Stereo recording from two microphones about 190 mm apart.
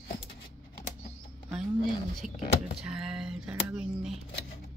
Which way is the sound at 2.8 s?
5° right (ahead or behind).